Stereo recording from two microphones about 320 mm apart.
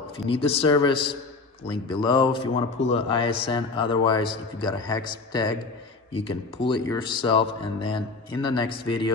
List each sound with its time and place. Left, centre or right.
0.3 s speech: centre
6.7 s speech: centre